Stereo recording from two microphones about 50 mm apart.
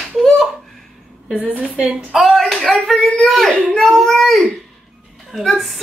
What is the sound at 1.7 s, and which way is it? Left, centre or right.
Speech, right.